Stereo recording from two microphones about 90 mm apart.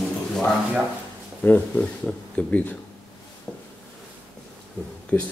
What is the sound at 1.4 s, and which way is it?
Speech, 20° left (ahead or behind).